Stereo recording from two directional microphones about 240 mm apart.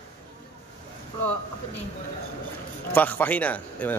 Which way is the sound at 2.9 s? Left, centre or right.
Centre.